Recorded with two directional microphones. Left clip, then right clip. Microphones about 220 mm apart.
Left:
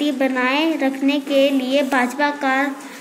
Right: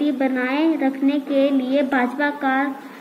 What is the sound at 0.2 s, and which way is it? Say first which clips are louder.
A woman's voice: left 2 dB; 10° left (ahead or behind).